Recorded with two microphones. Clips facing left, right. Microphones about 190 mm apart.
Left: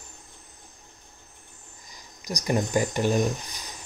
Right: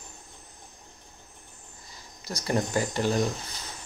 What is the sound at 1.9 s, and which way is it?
Speech, 15° left (ahead or behind).